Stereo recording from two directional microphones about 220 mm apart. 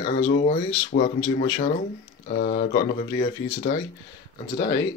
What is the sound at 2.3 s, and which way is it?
Speech, 40° left (ahead or behind).